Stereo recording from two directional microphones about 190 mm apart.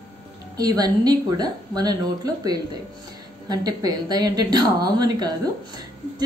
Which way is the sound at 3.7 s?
20° right (ahead or behind).